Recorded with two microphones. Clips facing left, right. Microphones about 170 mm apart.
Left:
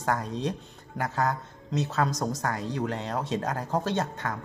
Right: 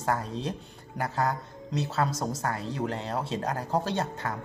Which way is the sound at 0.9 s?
35° right (ahead or behind).